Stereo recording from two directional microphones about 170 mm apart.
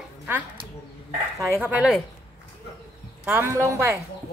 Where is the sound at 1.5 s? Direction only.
10° right (ahead or behind).